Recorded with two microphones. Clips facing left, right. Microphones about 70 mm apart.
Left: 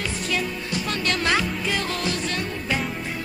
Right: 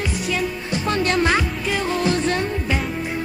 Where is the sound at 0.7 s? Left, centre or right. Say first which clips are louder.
Right 6 dB; right.